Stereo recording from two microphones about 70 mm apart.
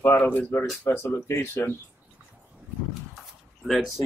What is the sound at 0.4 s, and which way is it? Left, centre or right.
Speech, left.